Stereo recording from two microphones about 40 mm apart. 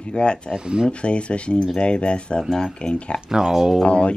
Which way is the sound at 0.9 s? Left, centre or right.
Left.